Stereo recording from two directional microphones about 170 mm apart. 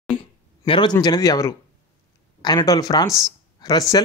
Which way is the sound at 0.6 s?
30° left (ahead or behind).